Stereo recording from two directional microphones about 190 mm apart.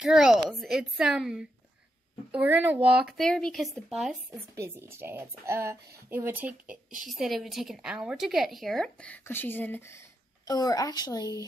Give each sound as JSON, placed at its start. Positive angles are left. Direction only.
{"t": 0.0, "sound": "a woman's voice", "side_deg": -5}
{"t": 4.6, "sound": "a woman's voice", "side_deg": -15}